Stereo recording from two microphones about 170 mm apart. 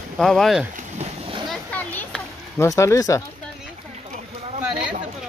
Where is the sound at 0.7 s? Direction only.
40° right (ahead or behind).